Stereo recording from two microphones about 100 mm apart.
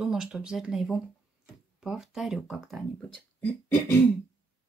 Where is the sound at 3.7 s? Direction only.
20° left (ahead or behind).